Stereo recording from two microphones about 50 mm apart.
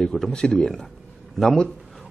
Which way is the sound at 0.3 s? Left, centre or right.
Centre.